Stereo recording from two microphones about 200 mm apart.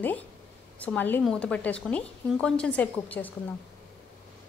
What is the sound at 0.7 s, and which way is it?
A woman's voice, 10° left (ahead or behind).